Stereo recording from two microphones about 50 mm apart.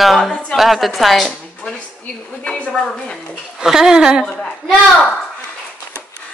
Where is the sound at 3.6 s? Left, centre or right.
Centre.